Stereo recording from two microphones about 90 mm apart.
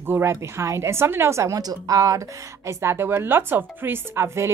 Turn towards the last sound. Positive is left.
turn(degrees=-30)  # may be behind; listen again after turning